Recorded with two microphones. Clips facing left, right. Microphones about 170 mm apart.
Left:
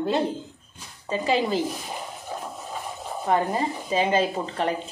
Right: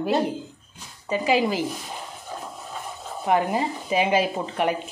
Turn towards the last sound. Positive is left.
turn(degrees=-10)  # may be behind; listen again after turning